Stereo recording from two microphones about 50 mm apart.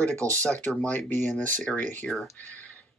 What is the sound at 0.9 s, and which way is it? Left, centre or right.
Speech, left.